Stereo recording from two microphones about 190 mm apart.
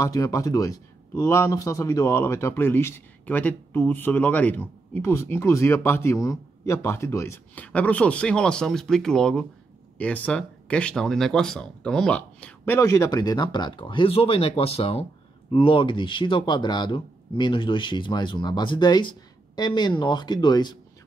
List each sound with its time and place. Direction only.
0.0 s a man's voice: 15° left (ahead or behind)